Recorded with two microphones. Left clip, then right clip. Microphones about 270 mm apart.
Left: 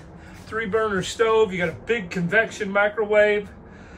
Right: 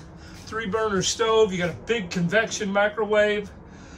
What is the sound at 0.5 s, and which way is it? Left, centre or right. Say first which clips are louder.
A man's voice: left 2 dB; centre.